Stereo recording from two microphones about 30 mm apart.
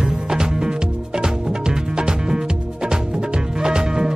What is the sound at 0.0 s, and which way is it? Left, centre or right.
Music, right.